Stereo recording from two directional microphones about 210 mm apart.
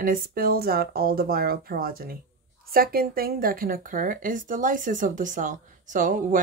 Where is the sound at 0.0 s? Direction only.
45° right (ahead or behind).